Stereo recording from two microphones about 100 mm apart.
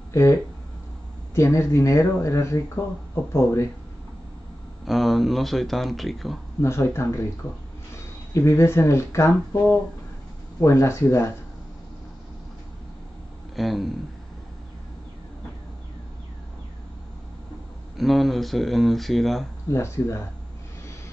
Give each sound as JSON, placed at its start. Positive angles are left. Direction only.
{"t": 0.1, "sound": "speech", "side_deg": 30}
{"t": 4.8, "sound": "speech", "side_deg": 0}
{"t": 6.6, "sound": "speech", "side_deg": 25}
{"t": 8.3, "sound": "speech", "side_deg": 30}
{"t": 13.6, "sound": "speech", "side_deg": 0}
{"t": 17.9, "sound": "speech", "side_deg": 0}
{"t": 19.7, "sound": "speech", "side_deg": 25}